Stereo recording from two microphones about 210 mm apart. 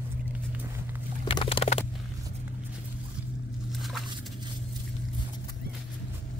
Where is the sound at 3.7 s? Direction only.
Centre (ahead or behind).